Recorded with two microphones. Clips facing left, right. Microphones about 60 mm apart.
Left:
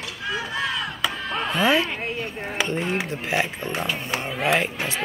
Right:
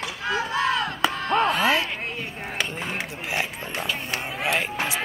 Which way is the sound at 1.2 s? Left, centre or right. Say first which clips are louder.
Right 7 dB; right.